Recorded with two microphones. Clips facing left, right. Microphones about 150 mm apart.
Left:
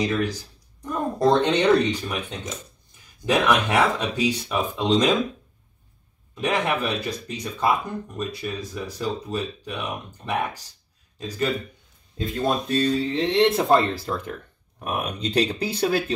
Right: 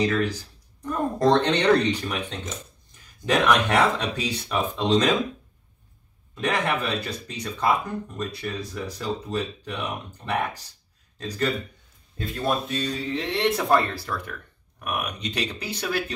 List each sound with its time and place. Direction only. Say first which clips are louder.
0.0 s speech: right 1 dB; 10° left (ahead or behind)
6.3 s speech: left 1 dB; 10° left (ahead or behind)
12.2 s speech: left 2 dB; 20° left (ahead or behind)